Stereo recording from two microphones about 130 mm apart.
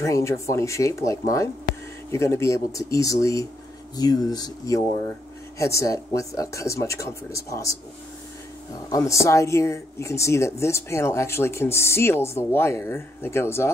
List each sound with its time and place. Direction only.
0.0 s speech: 25° left (ahead or behind)
8.7 s speech: 25° left (ahead or behind)